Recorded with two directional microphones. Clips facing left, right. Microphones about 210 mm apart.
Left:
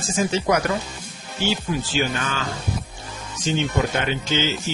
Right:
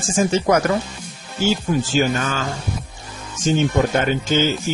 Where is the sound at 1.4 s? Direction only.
45° right (ahead or behind).